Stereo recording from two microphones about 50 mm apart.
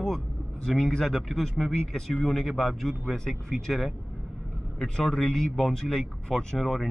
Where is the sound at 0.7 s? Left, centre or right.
Centre.